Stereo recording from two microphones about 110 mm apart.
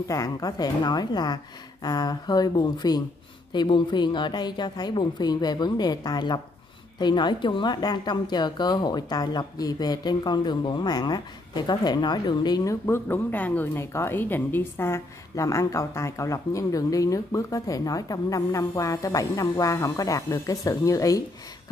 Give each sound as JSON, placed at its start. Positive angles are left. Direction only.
{"t": 0.1, "sound": "a woman's voice", "side_deg": 35}
{"t": 12.8, "sound": "a woman's voice", "side_deg": 20}